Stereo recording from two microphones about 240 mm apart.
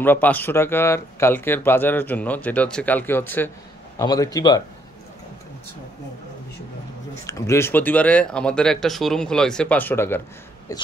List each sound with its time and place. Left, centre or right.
0.0 s speech: centre
7.2 s speech: centre